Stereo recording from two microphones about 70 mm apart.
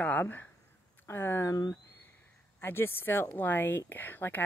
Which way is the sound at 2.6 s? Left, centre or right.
Left.